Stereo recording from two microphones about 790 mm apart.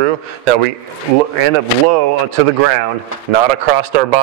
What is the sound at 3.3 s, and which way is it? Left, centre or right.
Speech, right.